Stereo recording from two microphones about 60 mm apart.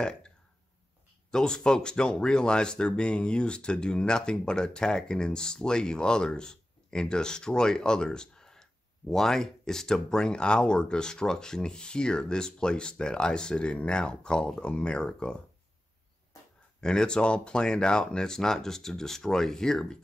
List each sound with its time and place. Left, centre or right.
0.0 s speech: centre
1.3 s speech: centre
16.8 s speech: centre